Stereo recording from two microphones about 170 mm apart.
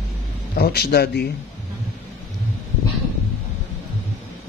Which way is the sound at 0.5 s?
65° left (ahead or behind).